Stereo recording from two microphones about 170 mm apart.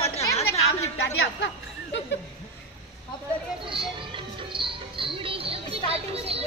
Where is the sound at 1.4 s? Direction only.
90° left.